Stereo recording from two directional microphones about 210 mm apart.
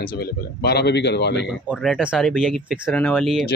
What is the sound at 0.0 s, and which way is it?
Speech, 50° left (ahead or behind).